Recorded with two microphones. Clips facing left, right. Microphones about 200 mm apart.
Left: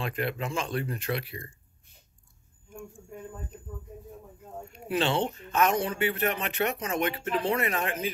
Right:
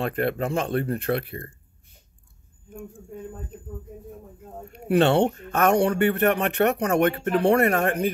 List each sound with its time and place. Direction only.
0.0 s speech: 55° right (ahead or behind)
4.6 s speech: 60° right (ahead or behind)